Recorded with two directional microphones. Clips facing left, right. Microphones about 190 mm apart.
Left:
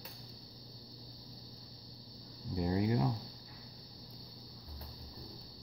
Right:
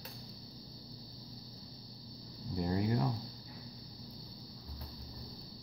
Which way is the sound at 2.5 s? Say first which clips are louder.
Left 1 dB; 20° left (ahead or behind).